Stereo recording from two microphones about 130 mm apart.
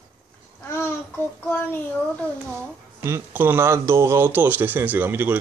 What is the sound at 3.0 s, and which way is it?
Speech, 20° right (ahead or behind).